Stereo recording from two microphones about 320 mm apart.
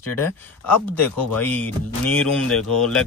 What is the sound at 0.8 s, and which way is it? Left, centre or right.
Speech, centre.